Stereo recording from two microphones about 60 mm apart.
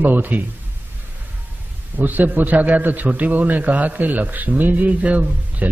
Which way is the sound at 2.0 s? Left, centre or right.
Right.